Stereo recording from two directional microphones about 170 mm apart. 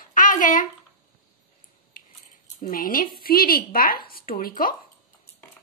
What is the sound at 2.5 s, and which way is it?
Speech, 55° left (ahead or behind).